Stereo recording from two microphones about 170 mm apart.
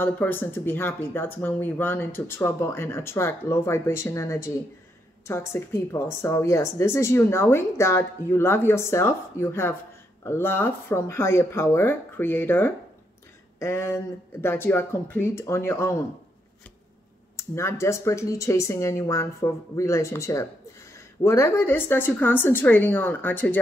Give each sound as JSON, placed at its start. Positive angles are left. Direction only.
{"t": 0.0, "sound": "speech", "side_deg": 10}
{"t": 17.4, "sound": "speech", "side_deg": 15}